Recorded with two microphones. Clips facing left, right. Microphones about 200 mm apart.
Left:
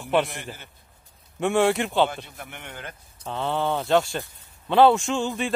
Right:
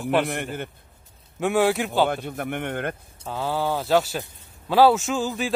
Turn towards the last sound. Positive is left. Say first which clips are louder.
# even
turn(degrees=0)  # may be behind; listen again after turning